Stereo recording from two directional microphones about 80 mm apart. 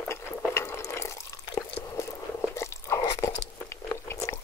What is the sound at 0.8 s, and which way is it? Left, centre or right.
Drip, left.